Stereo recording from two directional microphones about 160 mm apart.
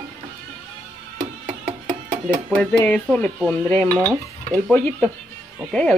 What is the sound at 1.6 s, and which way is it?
Music, 60° right (ahead or behind).